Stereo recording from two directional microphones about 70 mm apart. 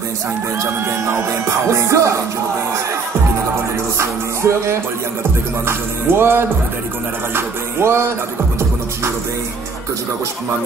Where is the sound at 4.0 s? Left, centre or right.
Right.